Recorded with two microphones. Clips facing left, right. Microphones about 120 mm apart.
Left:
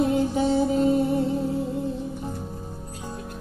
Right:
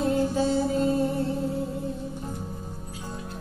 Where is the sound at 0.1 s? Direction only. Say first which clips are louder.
Left 2 dB; 20° left (ahead or behind).